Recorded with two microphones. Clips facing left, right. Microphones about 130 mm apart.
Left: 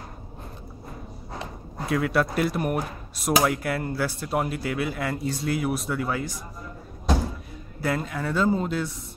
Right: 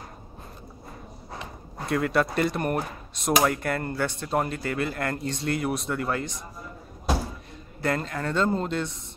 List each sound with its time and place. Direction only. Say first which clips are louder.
1.9 s speech: even; centre (ahead or behind)
7.8 s speech: even; 5° left (ahead or behind)